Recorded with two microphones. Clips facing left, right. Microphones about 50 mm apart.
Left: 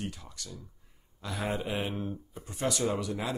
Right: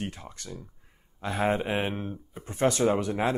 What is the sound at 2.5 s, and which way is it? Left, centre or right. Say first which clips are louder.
Speech: right 7 dB; right.